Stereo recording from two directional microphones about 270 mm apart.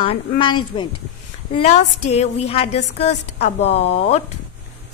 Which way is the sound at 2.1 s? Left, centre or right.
Left.